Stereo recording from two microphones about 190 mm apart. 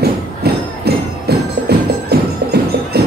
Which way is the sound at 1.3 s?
55° right (ahead or behind).